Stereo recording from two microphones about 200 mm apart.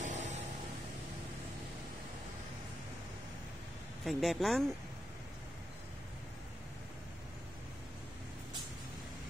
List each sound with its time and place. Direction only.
0.0 s vehicle: 35° right (ahead or behind)
4.0 s speech: centre (ahead or behind)